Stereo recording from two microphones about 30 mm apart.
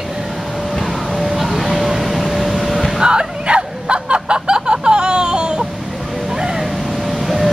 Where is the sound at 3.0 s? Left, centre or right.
Right.